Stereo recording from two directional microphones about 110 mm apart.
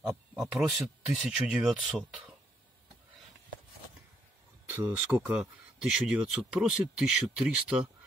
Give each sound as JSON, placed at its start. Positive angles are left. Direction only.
{"t": 0.3, "sound": "speech", "side_deg": -5}
{"t": 4.6, "sound": "speech", "side_deg": -20}